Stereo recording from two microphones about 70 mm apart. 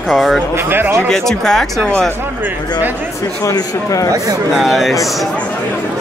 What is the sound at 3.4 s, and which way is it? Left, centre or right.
Speech, left.